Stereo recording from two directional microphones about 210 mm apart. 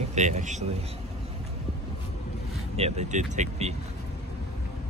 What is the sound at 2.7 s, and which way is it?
Speech, 30° right (ahead or behind).